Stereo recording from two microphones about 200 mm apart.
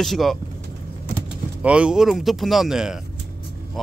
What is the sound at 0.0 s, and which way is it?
Speech, centre (ahead or behind).